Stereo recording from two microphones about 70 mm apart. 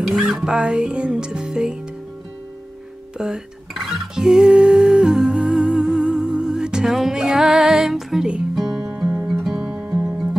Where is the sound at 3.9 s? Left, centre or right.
Centre.